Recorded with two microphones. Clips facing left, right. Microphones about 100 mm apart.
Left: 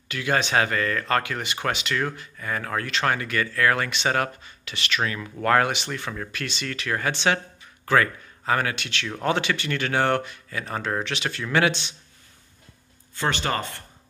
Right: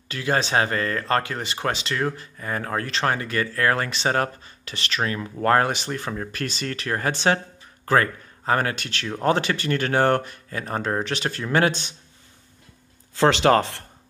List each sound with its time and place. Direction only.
0.1 s speech: 35° right (ahead or behind)
13.1 s speech: 90° right